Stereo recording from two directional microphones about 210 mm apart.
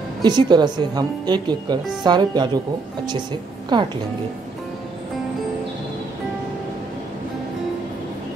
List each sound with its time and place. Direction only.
0.2 s speech: 20° right (ahead or behind)
3.7 s speech: 20° right (ahead or behind)